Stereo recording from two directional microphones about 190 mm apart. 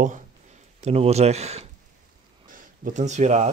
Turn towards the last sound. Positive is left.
turn(degrees=-40)  # may be behind; listen again after turning